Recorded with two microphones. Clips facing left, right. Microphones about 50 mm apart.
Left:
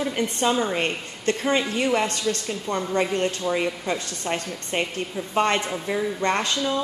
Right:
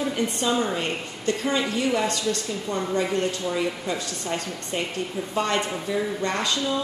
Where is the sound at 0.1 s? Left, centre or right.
Left.